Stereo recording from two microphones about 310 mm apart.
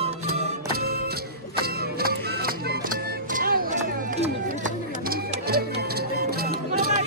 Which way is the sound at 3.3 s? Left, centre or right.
Right.